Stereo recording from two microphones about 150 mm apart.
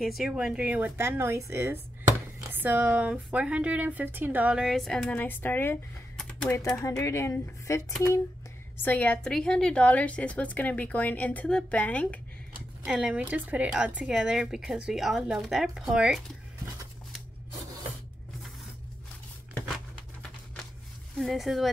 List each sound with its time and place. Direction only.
0.0 s speech: centre (ahead or behind)
6.8 s a woman's voice: 20° left (ahead or behind)
8.8 s a woman's voice: 10° left (ahead or behind)
12.8 s speech: 5° right (ahead or behind)
21.2 s speech: centre (ahead or behind)